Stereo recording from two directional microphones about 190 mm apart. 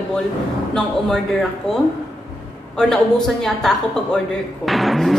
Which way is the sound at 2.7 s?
Centre (ahead or behind).